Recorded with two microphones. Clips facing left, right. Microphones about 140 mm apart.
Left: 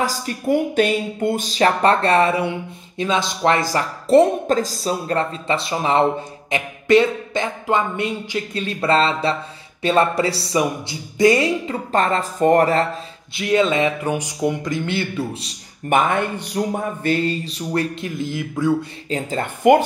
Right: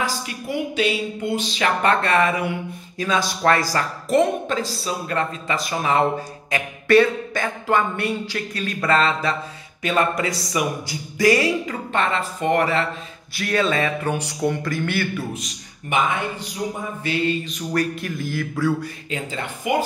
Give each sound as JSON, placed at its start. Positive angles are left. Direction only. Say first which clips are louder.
{"t": 0.0, "sound": "speech", "louder": "left 4 dB", "side_deg": 40}
{"t": 3.0, "sound": "a sound", "louder": "left 2 dB", "side_deg": 25}
{"t": 3.7, "sound": "speech", "louder": "left 5 dB", "side_deg": 35}
{"t": 6.5, "sound": "a sound", "louder": "left 1 dB", "side_deg": 20}
{"t": 11.9, "sound": "speech", "louder": "left 4 dB", "side_deg": 40}
{"t": 13.3, "sound": "a sound", "louder": "left 4 dB", "side_deg": 20}
{"t": 15.9, "sound": "speech", "louder": "left 4 dB", "side_deg": 55}
{"t": 19.0, "sound": "speech", "louder": "left 7 dB", "side_deg": 35}
{"t": 19.4, "sound": "speech", "louder": "left 10 dB", "side_deg": 60}